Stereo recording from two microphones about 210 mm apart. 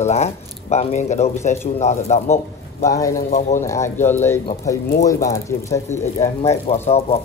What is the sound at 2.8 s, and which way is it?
Speech, 15° left (ahead or behind).